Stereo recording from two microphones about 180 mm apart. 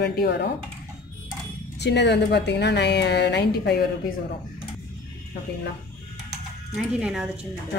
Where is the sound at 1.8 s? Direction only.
70° left (ahead or behind).